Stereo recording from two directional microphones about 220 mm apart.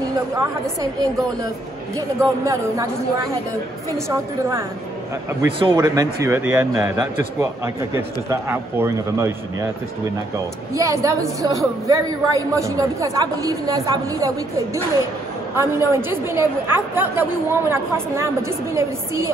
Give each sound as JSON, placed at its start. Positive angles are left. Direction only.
{"t": 2.0, "sound": "a woman's voice", "side_deg": -15}
{"t": 4.1, "sound": "a woman's voice", "side_deg": -10}
{"t": 10.7, "sound": "a woman's voice", "side_deg": -15}
{"t": 15.5, "sound": "a woman's voice", "side_deg": -10}